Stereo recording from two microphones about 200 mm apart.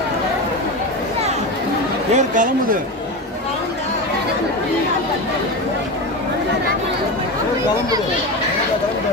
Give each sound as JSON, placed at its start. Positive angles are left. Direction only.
{"t": 2.1, "sound": "speech", "side_deg": -40}